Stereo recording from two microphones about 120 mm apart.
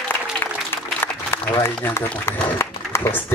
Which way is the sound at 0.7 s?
20° left (ahead or behind).